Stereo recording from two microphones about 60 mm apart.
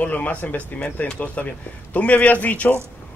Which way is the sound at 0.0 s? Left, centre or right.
Left.